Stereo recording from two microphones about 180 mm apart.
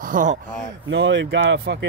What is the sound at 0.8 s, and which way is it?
Speech, 90° right.